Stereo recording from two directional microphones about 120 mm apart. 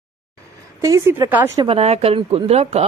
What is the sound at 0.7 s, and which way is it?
Speech, 25° right (ahead or behind).